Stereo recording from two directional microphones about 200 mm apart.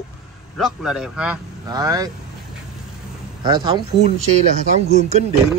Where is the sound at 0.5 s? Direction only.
Centre (ahead or behind).